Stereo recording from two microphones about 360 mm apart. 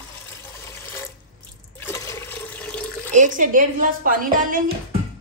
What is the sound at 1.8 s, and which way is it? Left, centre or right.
Toilet flush, centre.